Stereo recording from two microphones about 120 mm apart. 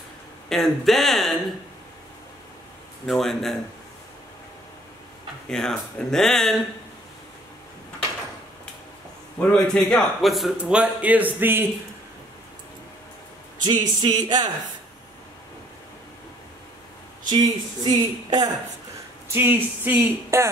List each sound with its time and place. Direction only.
0.5 s speech: centre (ahead or behind)
3.1 s speech: centre (ahead or behind)
5.5 s speech: 5° left (ahead or behind)
9.4 s a man's voice: 10° left (ahead or behind); by 11.6 s 15° right (ahead or behind)
13.6 s speech: 35° right (ahead or behind)
17.3 s speech: 35° right (ahead or behind)
19.2 s speech: 20° right (ahead or behind)